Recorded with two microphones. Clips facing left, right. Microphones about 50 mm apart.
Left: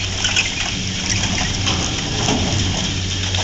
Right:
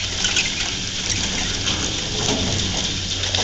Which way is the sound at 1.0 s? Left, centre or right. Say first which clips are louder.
Left 4 dB; left.